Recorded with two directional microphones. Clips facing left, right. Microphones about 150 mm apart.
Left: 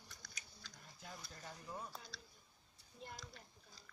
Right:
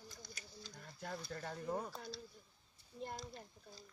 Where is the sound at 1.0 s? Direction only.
60° right (ahead or behind).